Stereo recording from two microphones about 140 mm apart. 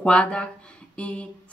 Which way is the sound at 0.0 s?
10° left (ahead or behind).